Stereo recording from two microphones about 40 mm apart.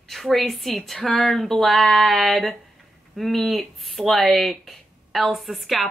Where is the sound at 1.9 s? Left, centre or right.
Left.